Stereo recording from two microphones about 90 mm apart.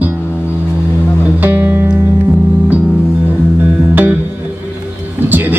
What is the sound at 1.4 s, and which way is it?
Music, 20° right (ahead or behind).